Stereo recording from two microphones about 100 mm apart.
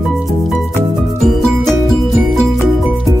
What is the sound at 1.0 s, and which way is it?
Music, centre (ahead or behind).